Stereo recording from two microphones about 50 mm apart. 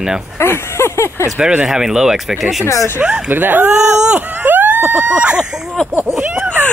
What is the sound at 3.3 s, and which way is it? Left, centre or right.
Speech, right.